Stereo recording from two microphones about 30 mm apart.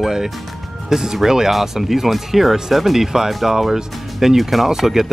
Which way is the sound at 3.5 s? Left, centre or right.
Centre.